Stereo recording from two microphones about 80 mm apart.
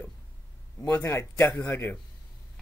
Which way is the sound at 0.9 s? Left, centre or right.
Left.